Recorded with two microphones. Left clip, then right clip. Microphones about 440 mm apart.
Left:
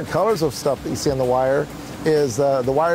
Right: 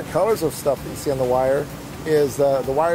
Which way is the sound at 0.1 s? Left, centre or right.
Left.